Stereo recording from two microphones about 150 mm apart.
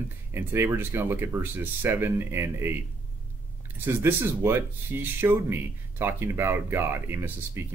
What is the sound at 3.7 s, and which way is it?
Speech, 15° right (ahead or behind).